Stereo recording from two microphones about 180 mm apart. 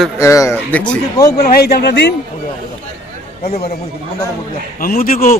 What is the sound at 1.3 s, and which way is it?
Speech, 60° left (ahead or behind).